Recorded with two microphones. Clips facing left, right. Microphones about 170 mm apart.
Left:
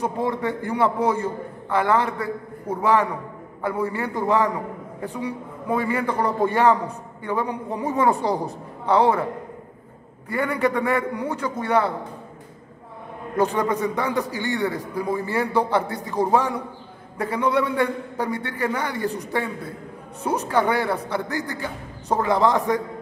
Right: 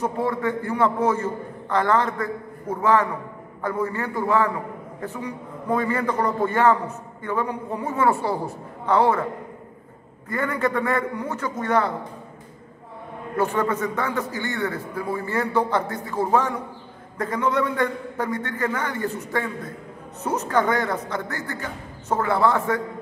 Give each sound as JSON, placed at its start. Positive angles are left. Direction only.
{"t": 0.0, "sound": "a man's voice", "side_deg": 15}
{"t": 10.3, "sound": "a man's voice", "side_deg": 15}
{"t": 13.4, "sound": "a man's voice", "side_deg": 15}